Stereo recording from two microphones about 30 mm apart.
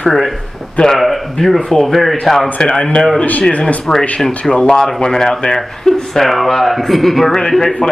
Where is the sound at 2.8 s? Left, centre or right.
Left.